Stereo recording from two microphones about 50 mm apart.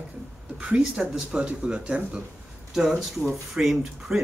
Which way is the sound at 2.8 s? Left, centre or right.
Centre.